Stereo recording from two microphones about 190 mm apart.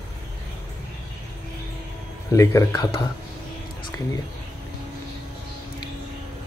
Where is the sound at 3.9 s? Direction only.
15° left (ahead or behind).